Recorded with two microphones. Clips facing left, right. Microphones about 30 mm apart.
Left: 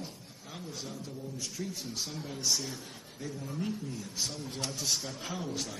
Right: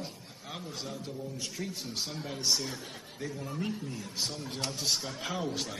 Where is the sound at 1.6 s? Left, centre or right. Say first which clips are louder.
Even; right.